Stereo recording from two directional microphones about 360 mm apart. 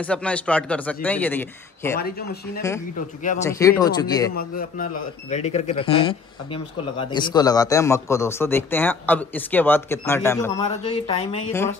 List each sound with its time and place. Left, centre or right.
0.0 s a man's voice: centre
2.0 s speech: left
3.4 s speech: centre
4.4 s speech: left